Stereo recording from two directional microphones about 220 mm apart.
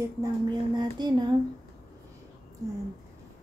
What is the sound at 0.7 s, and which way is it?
Speech, 20° right (ahead or behind).